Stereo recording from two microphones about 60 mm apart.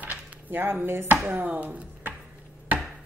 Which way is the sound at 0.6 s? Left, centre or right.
Right.